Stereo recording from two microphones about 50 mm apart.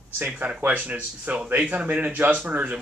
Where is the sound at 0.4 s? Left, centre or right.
Right.